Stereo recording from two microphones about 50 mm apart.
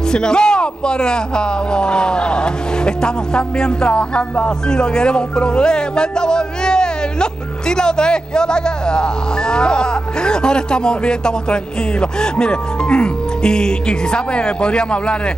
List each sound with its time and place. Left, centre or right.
0.1 s a man's voice: centre